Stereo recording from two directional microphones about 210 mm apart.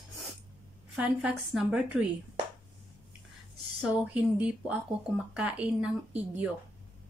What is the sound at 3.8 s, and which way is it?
A woman's voice, 5° right (ahead or behind).